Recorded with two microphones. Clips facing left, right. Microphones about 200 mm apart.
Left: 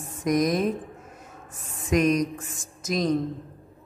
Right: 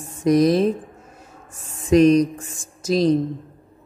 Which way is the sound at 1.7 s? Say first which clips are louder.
Right 8 dB; 30° right (ahead or behind).